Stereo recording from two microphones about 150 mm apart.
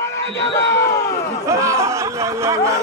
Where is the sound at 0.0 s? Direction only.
20° left (ahead or behind).